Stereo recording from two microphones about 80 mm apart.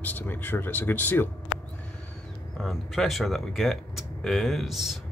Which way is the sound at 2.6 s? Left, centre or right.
Centre.